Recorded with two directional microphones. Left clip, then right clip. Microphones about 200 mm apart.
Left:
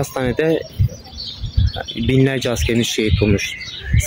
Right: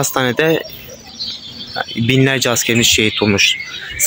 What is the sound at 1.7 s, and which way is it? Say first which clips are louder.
Speech: right 3 dB; 5° left (ahead or behind).